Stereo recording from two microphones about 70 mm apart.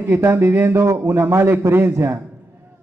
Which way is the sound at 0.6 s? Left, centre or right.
Right.